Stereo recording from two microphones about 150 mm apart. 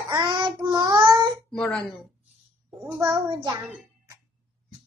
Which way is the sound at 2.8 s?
10° right (ahead or behind).